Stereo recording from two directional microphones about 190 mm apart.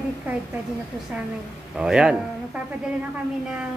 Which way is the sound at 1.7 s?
5° right (ahead or behind).